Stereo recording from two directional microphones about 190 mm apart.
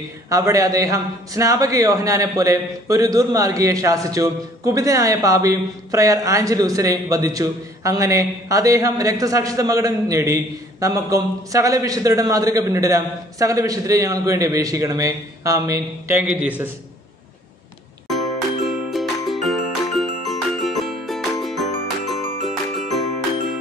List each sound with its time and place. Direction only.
0.3 s a man's voice: 15° right (ahead or behind)
18.0 s music: centre (ahead or behind)